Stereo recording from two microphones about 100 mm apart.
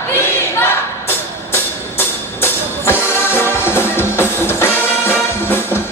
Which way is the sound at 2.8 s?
25° left (ahead or behind).